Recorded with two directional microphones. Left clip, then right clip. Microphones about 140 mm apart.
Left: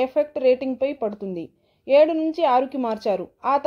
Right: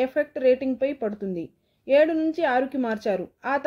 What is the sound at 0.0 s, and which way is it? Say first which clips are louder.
A woman's voice: left 2 dB; 20° left (ahead or behind).